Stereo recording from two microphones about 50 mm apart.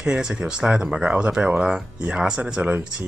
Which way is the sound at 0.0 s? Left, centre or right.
Centre.